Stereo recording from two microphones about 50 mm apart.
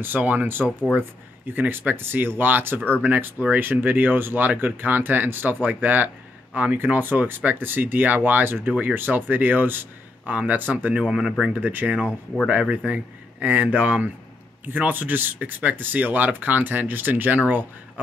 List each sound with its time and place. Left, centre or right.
0.0 s speech: right
3.4 s speech: left
3.8 s speech: right
11.0 s speech: centre
11.5 s speech: right
12.4 s speech: right